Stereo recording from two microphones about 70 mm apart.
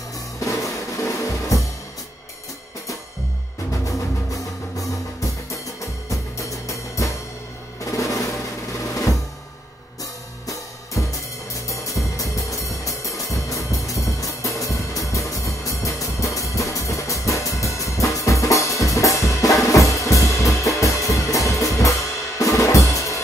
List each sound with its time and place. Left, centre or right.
0.4 s music: left
3.8 s music: left
7.8 s drum: left
10.4 s music: left
22.4 s drum kit: left